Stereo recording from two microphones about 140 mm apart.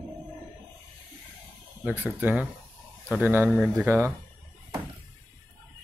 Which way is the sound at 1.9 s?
15° right (ahead or behind).